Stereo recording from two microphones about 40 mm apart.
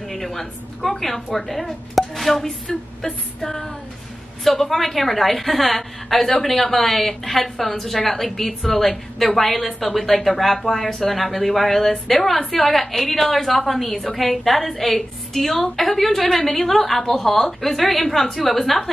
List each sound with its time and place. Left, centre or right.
0.1 s a woman's voice: centre
2.4 s a sound: centre
3.4 s music: centre
4.5 s a woman's voice: centre